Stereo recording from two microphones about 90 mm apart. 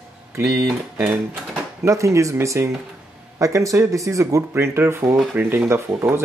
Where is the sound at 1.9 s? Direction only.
35° right (ahead or behind).